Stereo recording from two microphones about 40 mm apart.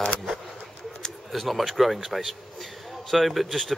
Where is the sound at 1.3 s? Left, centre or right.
Centre.